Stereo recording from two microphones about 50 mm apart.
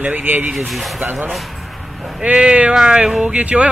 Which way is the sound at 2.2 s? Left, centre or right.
Centre.